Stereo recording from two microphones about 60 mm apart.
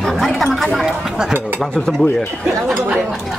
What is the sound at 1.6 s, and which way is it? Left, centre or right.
Speech, centre.